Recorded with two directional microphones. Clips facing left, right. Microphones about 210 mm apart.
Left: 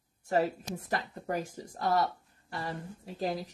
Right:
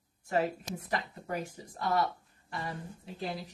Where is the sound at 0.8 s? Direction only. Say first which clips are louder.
Left 2 dB; 45° left (ahead or behind).